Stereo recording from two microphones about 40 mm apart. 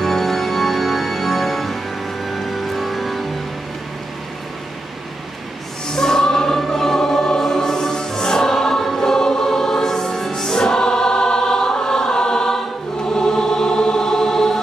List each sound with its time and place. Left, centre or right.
0.0 s music: centre
5.9 s choir: centre